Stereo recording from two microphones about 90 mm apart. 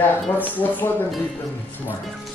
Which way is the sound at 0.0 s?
20° left (ahead or behind).